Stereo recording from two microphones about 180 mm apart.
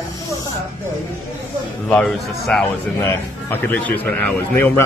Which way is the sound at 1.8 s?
5° left (ahead or behind).